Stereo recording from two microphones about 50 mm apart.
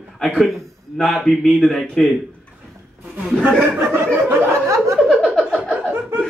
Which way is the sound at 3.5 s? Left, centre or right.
Centre.